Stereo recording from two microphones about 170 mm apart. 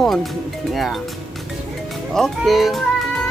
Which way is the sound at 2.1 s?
Centre (ahead or behind).